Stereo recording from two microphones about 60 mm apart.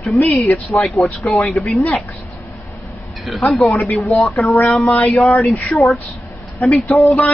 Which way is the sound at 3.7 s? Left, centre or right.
Left.